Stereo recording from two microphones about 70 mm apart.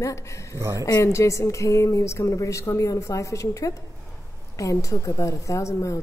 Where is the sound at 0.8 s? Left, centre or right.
Left.